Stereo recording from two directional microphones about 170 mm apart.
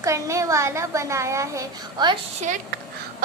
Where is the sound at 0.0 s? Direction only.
20° right (ahead or behind).